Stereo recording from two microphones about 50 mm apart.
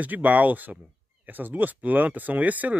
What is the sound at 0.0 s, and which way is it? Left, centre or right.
Speech, right.